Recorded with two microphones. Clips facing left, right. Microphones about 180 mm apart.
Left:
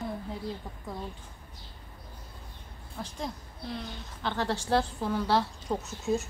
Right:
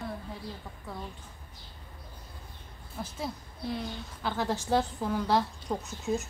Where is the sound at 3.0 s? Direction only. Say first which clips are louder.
Even; 5° right (ahead or behind).